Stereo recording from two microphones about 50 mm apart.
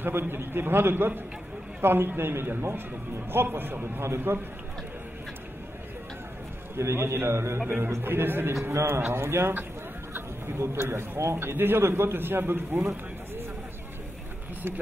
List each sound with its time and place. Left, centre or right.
0.0 s a man's voice: right
4.3 s a man's voice: right
6.8 s a man's voice: right
7.6 s a man's voice: right
11.3 s a man's voice: right